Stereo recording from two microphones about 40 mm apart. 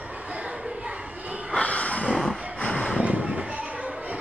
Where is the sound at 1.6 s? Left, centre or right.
Left.